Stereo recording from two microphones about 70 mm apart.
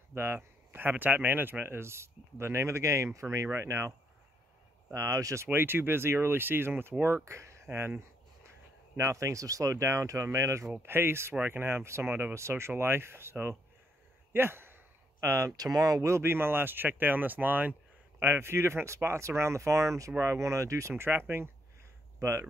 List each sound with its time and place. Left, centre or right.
0.1 s speech: right
4.9 s speech: right
10.8 s speech: right
16.1 s speech: right
20.9 s speech: right